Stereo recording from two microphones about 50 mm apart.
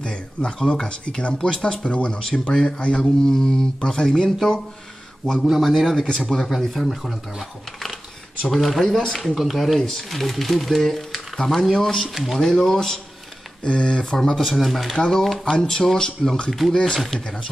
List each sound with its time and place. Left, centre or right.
0.0 s speech: centre
3.3 s speech: centre
13.6 s speech: centre
14.1 s speech: centre
15.5 s speech: centre
15.8 s speech: centre
16.7 s speech: centre